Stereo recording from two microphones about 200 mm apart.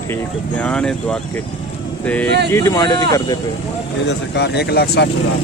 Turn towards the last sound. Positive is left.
turn(degrees=55)  # may be behind; listen again after turning